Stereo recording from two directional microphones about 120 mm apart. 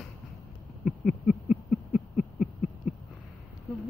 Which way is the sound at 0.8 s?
5° right (ahead or behind).